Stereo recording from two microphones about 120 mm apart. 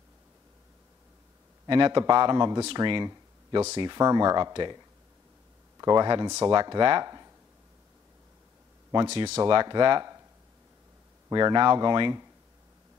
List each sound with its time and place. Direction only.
1.7 s speech: 40° right (ahead or behind)
5.8 s speech: 30° right (ahead or behind)
9.0 s speech: 60° right (ahead or behind)
9.4 s speech: 40° right (ahead or behind)
11.2 s speech: 35° right (ahead or behind)